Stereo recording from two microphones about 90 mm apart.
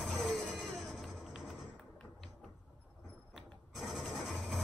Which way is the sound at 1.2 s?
5° right (ahead or behind).